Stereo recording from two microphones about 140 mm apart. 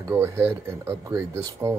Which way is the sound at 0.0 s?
15° right (ahead or behind).